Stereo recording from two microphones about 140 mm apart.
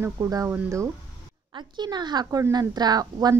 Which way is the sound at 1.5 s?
30° right (ahead or behind).